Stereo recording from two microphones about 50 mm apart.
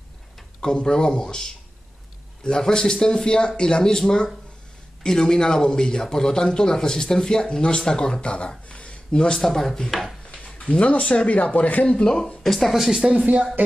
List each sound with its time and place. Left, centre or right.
0.6 s a man's voice: centre
8.6 s a sound: left
9.4 s speech: centre
10.8 s speech: left
11.8 s speech: centre